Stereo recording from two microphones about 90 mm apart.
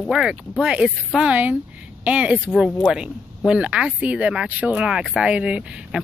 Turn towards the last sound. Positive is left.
turn(degrees=-10)  # may be behind; listen again after turning